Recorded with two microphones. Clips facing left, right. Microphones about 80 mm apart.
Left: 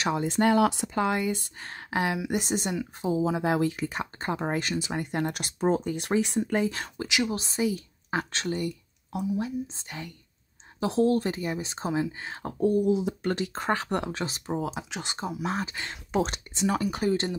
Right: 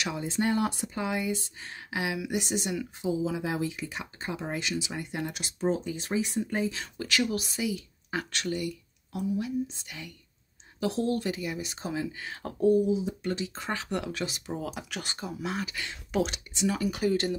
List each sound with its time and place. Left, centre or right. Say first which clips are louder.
0.2 s speech: left 5 dB; left
6.0 s speech: left 3 dB; left
7.0 s speech: even; centre
7.2 s speech: left 3 dB; left
12.8 s speech: left 3 dB; left
14.0 s speech: left 2 dB; left
14.6 s speech: left 3 dB; left